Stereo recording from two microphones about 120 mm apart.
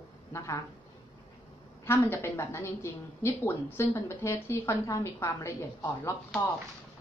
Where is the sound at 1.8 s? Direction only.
20° left (ahead or behind).